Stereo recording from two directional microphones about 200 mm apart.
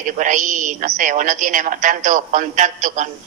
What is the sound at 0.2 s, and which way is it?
A woman's voice, 40° right (ahead or behind).